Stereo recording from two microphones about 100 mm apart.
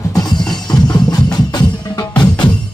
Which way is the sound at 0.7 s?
40° left (ahead or behind).